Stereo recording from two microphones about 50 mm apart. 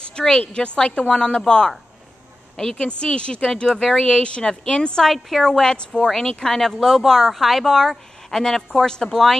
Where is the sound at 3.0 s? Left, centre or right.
Centre.